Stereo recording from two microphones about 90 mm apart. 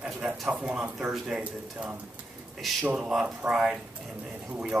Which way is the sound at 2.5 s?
Centre (ahead or behind).